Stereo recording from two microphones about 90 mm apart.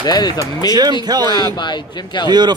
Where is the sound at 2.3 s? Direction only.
50° right (ahead or behind).